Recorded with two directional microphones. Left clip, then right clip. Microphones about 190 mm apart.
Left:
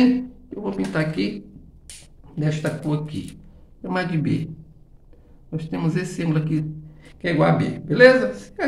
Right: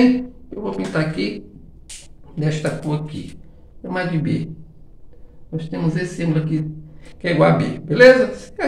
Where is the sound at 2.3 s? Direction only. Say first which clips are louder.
Right 3 dB; 10° left (ahead or behind).